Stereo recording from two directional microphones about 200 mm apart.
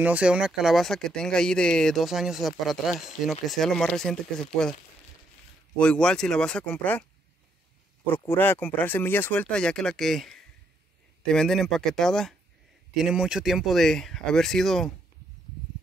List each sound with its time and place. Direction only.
0.0 s speech: 5° right (ahead or behind)
5.8 s speech: 5° left (ahead or behind)